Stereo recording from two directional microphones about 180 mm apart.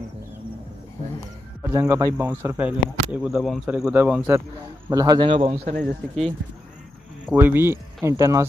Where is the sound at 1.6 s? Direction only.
15° right (ahead or behind).